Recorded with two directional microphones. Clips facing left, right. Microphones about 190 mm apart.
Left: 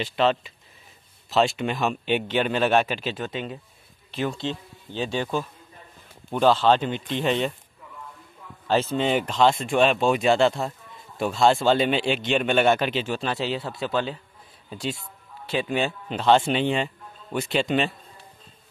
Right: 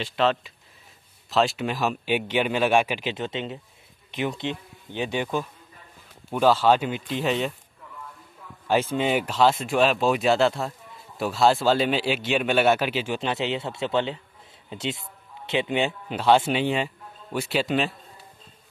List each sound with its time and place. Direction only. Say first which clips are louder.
0.0 s a man's voice: left 1 dB; centre (ahead or behind)
8.6 s a man's voice: even; 10° right (ahead or behind)